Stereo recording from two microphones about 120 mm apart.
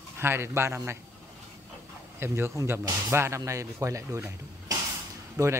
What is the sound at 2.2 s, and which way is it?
Speech, 20° right (ahead or behind).